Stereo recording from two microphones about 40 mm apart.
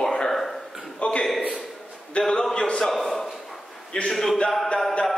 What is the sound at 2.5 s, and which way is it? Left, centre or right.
Speech, centre.